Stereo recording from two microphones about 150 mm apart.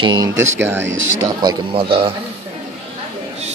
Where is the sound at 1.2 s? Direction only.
30° right (ahead or behind).